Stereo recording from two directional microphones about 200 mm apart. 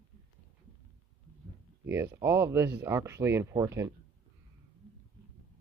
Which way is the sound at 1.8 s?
10° right (ahead or behind).